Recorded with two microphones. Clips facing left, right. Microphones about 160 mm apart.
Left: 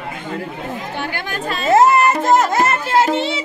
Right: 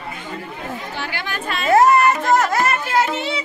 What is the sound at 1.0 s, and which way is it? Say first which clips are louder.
Chatter: left 3 dB; 40° left (ahead or behind).